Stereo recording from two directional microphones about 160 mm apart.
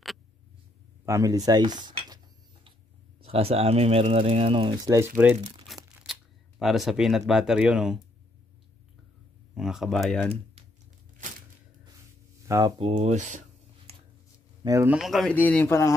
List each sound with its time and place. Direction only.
1.0 s speech: 20° right (ahead or behind)
3.2 s speech: 35° right (ahead or behind)
4.8 s speech: 20° right (ahead or behind)
5.7 s a sound: centre (ahead or behind)
6.0 s camera: 5° right (ahead or behind)
6.6 s speech: centre (ahead or behind)
9.6 s speech: centre (ahead or behind)
12.4 s speech: 25° right (ahead or behind)
12.9 s speech: 50° right (ahead or behind)
13.9 s a sound: 40° right (ahead or behind)
14.6 s speech: 20° right (ahead or behind)
14.9 s speech: centre (ahead or behind)
15.3 s a man's voice: 10° left (ahead or behind)